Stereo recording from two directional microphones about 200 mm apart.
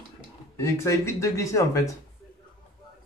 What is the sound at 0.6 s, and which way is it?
Speech, 15° left (ahead or behind).